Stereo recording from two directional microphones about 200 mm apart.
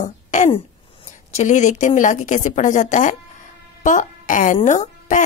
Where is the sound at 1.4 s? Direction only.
40° left (ahead or behind).